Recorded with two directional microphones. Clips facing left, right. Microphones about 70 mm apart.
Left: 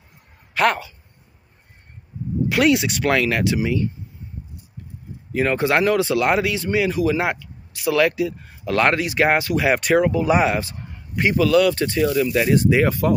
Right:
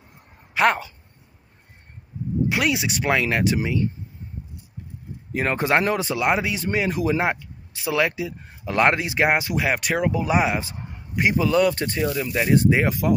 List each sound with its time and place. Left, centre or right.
0.6 s speech: centre
2.6 s speech: centre; by 3.8 s right
5.3 s speech: right
5.7 s speech: right
9.6 s speech: centre
10.6 s a sound: right
11.3 s speech: right
12.8 s speech: centre